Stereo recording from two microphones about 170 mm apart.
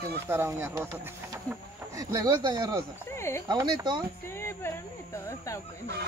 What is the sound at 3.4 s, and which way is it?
Speech, 25° right (ahead or behind).